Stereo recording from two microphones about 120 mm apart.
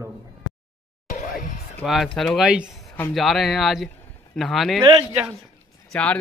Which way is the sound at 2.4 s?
10° right (ahead or behind).